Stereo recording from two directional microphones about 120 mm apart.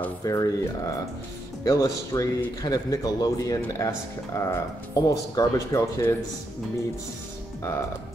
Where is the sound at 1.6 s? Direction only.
30° left (ahead or behind).